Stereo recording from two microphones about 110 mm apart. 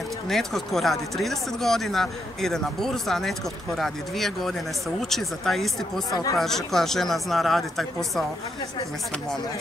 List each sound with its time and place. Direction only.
0.3 s speech: 5° left (ahead or behind)
6.0 s speech: 35° left (ahead or behind)
6.3 s speech: 5° left (ahead or behind)